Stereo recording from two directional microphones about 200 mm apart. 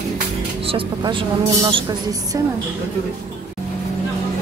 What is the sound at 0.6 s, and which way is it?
Speech, 25° right (ahead or behind).